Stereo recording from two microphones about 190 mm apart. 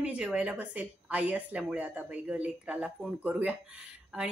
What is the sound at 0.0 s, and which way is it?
A woman's voice, 5° right (ahead or behind).